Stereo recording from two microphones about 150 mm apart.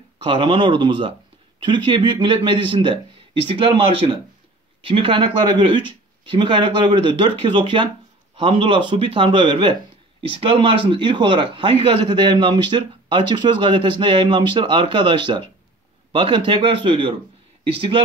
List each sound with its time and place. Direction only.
0.2 s a man's voice: 35° right (ahead or behind)